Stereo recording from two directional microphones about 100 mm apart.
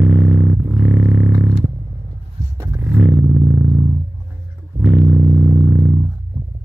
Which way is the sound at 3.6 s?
15° right (ahead or behind).